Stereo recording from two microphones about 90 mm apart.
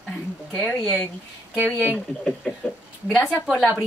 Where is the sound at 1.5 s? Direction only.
20° right (ahead or behind).